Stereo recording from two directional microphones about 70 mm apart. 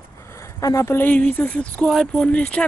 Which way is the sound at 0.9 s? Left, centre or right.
Left.